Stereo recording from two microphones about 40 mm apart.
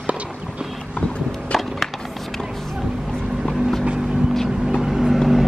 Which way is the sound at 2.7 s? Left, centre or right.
Centre.